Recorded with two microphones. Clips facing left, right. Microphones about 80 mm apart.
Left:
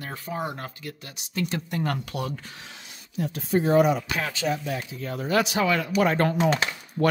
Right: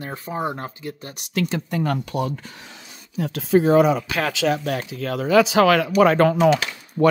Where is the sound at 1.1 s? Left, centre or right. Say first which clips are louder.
Right 5 dB; right.